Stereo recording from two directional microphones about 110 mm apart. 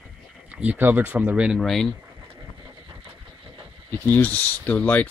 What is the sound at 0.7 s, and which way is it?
Speech, 15° right (ahead or behind).